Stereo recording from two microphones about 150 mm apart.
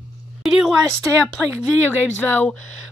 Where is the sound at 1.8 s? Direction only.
10° left (ahead or behind).